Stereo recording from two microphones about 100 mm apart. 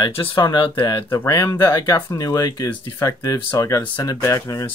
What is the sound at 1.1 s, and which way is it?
Speech, 35° left (ahead or behind).